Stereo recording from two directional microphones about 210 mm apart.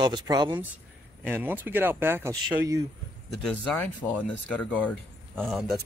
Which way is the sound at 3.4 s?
5° left (ahead or behind).